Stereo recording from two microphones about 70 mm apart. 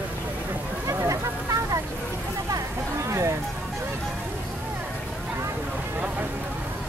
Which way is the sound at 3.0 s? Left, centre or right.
Right.